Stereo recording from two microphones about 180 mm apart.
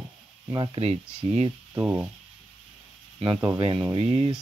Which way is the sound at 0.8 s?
35° right (ahead or behind).